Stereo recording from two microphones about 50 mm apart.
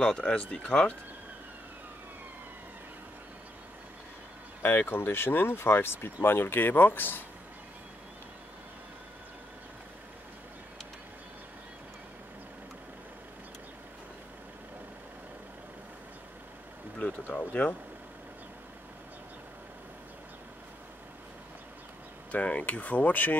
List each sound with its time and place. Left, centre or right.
0.0 s speech: left
4.6 s speech: left
17.0 s speech: left
22.3 s speech: left